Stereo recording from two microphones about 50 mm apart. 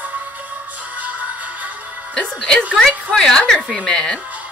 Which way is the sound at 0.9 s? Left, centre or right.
Right.